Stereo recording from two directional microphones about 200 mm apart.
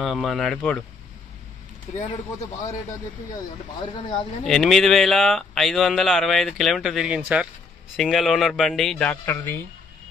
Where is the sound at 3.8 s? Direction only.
25° left (ahead or behind).